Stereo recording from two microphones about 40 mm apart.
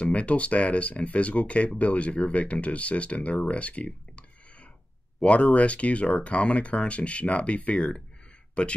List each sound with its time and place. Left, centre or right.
0.0 s speech: left
5.2 s speech: left